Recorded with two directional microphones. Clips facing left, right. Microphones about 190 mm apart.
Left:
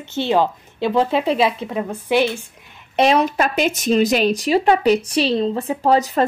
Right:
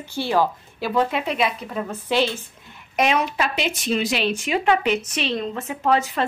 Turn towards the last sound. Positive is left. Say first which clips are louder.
# left 4 dB
turn(degrees=35)  # may be behind; listen again after turning